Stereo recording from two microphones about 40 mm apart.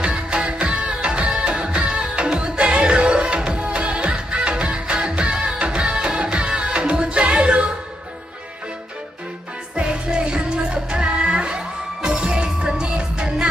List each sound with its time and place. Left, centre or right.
0.0 s music: right
9.8 s music: right